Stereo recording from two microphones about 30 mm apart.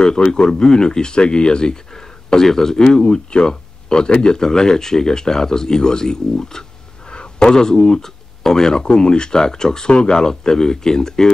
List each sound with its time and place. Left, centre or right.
0.0 s speech: left
2.8 s speech: left
7.1 s speech: left
8.8 s speech: left